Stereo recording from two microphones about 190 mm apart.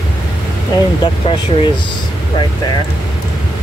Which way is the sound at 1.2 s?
25° left (ahead or behind).